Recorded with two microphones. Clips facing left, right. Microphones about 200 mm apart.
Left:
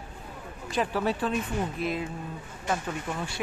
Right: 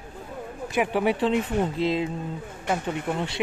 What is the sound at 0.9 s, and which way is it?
Speech, 20° right (ahead or behind).